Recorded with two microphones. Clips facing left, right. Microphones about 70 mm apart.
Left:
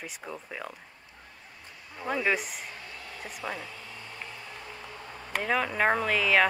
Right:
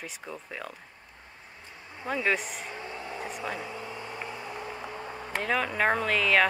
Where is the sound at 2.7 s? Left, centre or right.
Right.